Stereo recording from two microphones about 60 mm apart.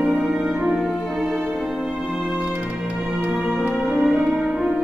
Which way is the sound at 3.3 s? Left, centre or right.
Centre.